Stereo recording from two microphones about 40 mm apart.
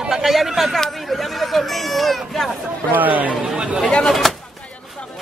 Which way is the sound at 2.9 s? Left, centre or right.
Right.